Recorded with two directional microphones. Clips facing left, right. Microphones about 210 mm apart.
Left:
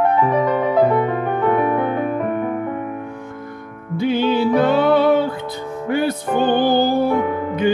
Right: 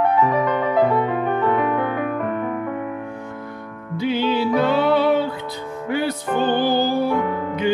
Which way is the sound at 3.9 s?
50° left (ahead or behind).